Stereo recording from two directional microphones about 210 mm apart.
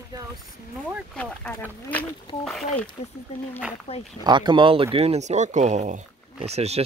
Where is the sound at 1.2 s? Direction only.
5° left (ahead or behind).